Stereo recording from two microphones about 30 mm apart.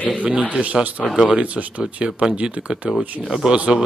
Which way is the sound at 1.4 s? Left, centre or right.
Right.